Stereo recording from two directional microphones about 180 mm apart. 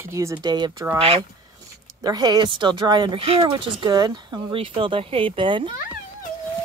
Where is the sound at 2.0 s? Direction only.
20° right (ahead or behind).